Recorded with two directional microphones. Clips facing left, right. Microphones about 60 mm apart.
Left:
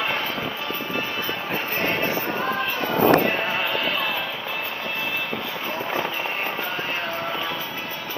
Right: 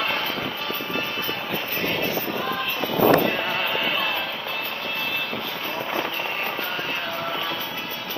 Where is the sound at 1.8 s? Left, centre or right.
Left.